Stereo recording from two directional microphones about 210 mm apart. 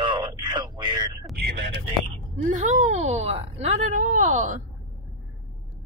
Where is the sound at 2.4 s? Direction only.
35° right (ahead or behind).